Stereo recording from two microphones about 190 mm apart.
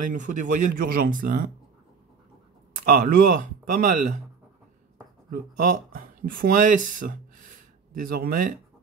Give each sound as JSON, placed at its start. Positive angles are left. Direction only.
{"t": 0.1, "sound": "speech", "side_deg": -40}
{"t": 2.7, "sound": "speech", "side_deg": -45}
{"t": 5.3, "sound": "speech", "side_deg": -45}